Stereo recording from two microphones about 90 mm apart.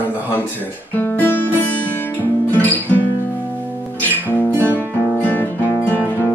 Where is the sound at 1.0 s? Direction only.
20° left (ahead or behind).